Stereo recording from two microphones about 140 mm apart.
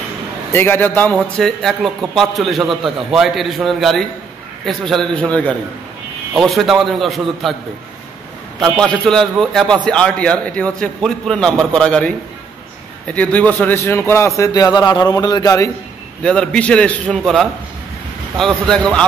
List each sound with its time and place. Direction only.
0.5 s a man's voice: 15° left (ahead or behind)
1.1 s a man's voice: centre (ahead or behind)
8.5 s a man's voice: 5° left (ahead or behind); by 15.7 s 25° left (ahead or behind)
16.2 s a man's voice: 5° left (ahead or behind)